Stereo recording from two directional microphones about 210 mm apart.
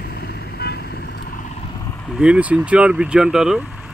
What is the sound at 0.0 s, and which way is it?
Vehicle, 50° left (ahead or behind).